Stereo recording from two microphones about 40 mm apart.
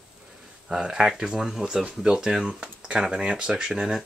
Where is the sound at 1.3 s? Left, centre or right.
Centre.